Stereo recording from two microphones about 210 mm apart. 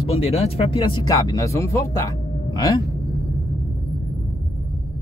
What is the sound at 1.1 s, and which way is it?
Speech, 15° left (ahead or behind).